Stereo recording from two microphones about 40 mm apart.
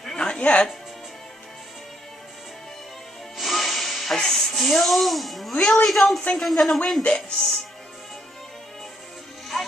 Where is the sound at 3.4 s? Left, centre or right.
Centre.